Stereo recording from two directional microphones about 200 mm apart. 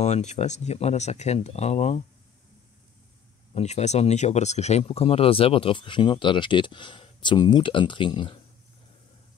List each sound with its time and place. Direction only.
0.0 s speech: 35° left (ahead or behind)
3.5 s speech: 35° left (ahead or behind)